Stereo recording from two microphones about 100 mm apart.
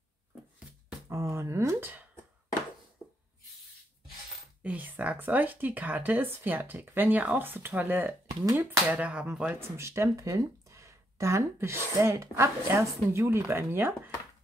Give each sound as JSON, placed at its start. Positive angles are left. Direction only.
{"t": 1.0, "sound": "speech", "side_deg": -25}
{"t": 4.6, "sound": "speech", "side_deg": -15}
{"t": 9.6, "sound": "speech", "side_deg": -25}